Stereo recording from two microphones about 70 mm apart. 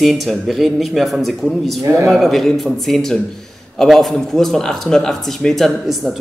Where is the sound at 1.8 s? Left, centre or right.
Right.